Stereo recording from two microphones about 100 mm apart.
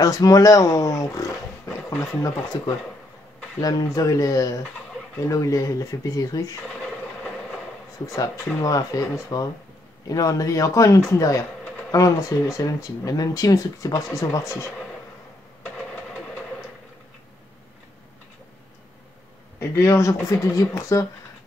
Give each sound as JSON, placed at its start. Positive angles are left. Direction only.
{"t": 0.0, "sound": "speech", "side_deg": 35}
{"t": 8.5, "sound": "speech", "side_deg": 35}
{"t": 19.8, "sound": "speech", "side_deg": 30}